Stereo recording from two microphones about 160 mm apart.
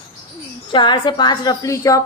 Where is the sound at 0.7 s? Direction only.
30° left (ahead or behind).